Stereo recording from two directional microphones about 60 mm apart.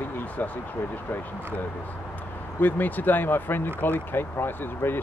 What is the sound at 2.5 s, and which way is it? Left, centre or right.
Speech, left.